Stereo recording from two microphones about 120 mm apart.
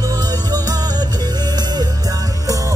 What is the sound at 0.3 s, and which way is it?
Music, 35° right (ahead or behind).